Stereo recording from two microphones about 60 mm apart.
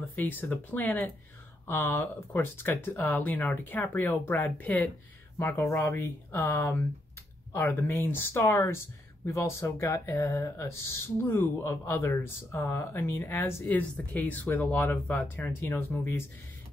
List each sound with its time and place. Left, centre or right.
0.1 s speech: left
5.4 s speech: left
5.7 s speech: left
5.9 s speech: left
13.7 s speech: left
15.9 s speech: left